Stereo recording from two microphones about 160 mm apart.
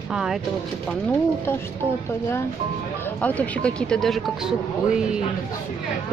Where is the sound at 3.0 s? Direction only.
10° left (ahead or behind).